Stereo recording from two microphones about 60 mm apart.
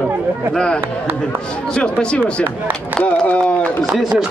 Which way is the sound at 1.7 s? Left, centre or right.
Centre.